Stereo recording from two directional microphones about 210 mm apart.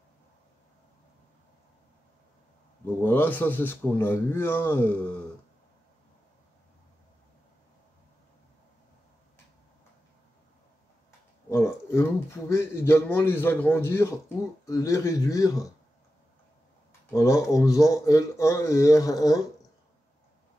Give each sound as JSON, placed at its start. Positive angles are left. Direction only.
{"t": 3.0, "sound": "speech", "side_deg": 10}
{"t": 11.1, "sound": "speech", "side_deg": 15}
{"t": 17.1, "sound": "speech", "side_deg": 15}